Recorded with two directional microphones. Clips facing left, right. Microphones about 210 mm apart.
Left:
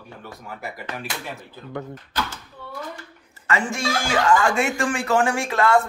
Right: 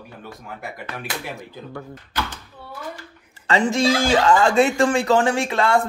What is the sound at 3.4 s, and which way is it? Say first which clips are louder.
Speech: right 6 dB; 35° right (ahead or behind).